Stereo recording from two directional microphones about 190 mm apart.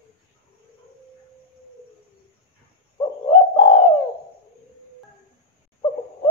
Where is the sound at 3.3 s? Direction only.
30° left (ahead or behind).